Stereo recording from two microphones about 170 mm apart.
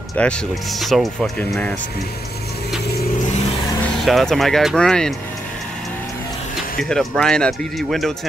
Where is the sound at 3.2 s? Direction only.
45° left (ahead or behind).